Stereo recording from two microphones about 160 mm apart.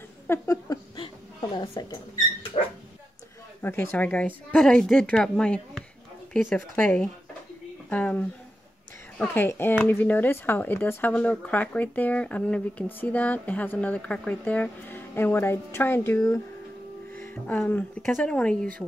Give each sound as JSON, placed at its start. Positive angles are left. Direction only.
{"t": 0.3, "sound": "speech", "side_deg": 20}
{"t": 0.9, "sound": "chuckle", "side_deg": 30}
{"t": 1.7, "sound": "speech", "side_deg": 25}
{"t": 3.6, "sound": "a woman's voice", "side_deg": 15}
{"t": 9.3, "sound": "a woman's voice", "side_deg": 15}